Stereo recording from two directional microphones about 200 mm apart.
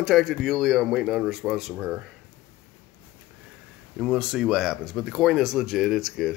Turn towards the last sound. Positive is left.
turn(degrees=0)  # may be behind; listen again after turning